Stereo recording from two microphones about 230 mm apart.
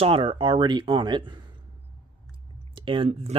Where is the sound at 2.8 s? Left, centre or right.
Right.